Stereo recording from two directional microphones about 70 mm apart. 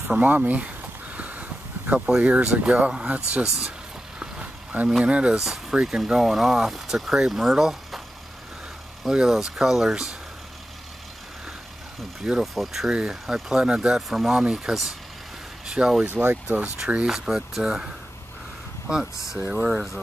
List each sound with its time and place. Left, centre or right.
0.1 s a sound: right
2.0 s speech: centre
4.2 s a sound: centre
5.0 s speech: centre
9.1 s speech: centre
12.2 s speech: centre
16.2 s speech: right
16.8 s speech: centre
19.5 s speech: centre